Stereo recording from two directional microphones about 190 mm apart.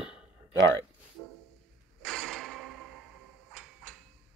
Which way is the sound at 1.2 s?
10° left (ahead or behind).